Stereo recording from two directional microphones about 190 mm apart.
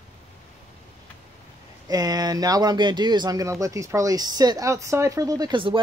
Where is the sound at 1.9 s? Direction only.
20° right (ahead or behind).